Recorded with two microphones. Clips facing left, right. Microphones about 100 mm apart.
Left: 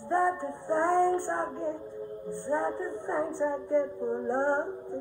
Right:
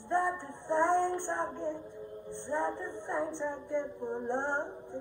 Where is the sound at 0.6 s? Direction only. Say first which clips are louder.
Left 3 dB; 20° right (ahead or behind).